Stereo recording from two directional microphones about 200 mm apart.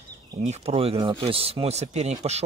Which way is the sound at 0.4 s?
35° right (ahead or behind).